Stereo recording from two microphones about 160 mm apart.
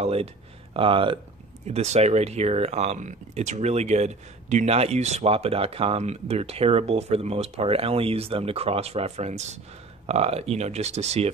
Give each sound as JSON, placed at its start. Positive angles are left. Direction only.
{"t": 0.0, "sound": "speech", "side_deg": -40}